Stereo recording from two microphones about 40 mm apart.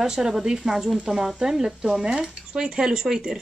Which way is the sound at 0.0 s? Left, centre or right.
Centre.